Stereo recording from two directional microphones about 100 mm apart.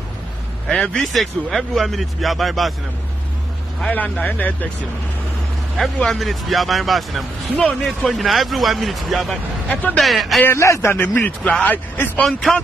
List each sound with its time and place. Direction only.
0.7 s speech: 10° left (ahead or behind)
3.9 s speech: 15° left (ahead or behind)
6.0 s speech: centre (ahead or behind)
10.4 s a man's voice: 30° left (ahead or behind)
12.2 s speech: centre (ahead or behind)